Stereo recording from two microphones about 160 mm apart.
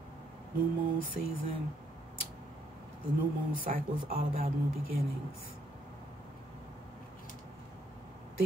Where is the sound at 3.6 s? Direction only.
60° right (ahead or behind).